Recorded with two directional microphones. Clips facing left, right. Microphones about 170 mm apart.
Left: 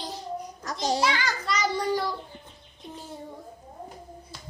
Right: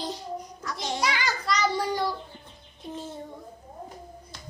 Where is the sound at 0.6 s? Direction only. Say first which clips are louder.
Left 7 dB; 40° left (ahead or behind).